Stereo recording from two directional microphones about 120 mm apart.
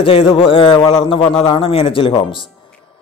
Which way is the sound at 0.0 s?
50° left (ahead or behind).